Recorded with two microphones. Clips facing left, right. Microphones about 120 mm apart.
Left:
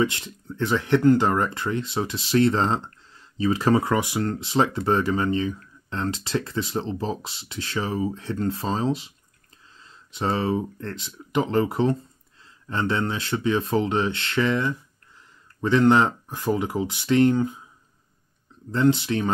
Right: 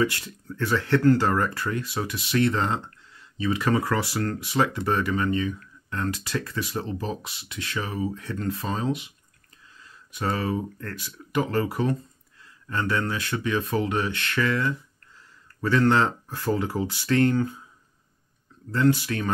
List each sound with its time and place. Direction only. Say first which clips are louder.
0.0 s speech: left 1 dB; 20° left (ahead or behind)
3.9 s speech: left 2 dB; 20° left (ahead or behind)
18.7 s speech: left 2 dB; 20° left (ahead or behind)